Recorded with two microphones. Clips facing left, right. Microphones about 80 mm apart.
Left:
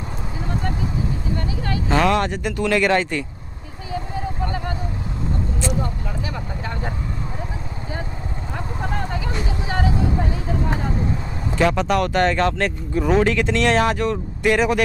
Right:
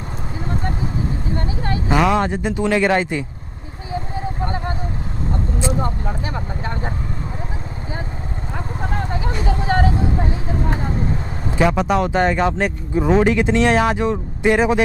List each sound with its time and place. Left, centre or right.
1.9 s speech: centre
3.9 s vehicle: right
5.7 s a sound: right
9.2 s vehicle: right
11.5 s speech: centre